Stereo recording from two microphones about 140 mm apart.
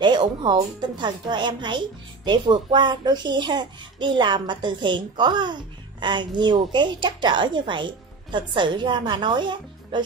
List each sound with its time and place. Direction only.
0.0 s a child's voice: 30° right (ahead or behind)